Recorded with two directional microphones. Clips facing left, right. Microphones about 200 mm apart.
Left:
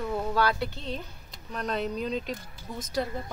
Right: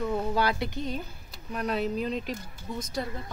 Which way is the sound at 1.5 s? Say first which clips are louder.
Right 2 dB; 5° right (ahead or behind).